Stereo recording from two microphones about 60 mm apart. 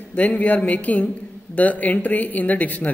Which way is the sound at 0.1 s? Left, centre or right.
Left.